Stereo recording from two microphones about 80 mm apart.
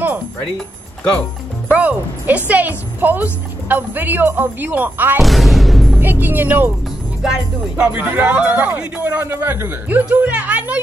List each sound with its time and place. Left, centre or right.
1.7 s speech: centre
5.2 s music: centre
5.9 s speech: right
7.2 s speech: centre